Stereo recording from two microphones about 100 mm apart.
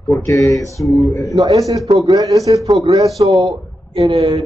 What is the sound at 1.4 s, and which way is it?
A woman's voice, 35° right (ahead or behind).